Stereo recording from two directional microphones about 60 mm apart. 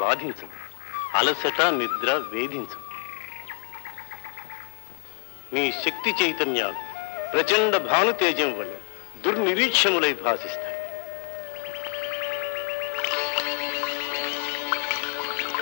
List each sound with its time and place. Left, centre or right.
0.0 s speech: left
0.9 s a sound: left
5.5 s speech: left
11.6 s music: left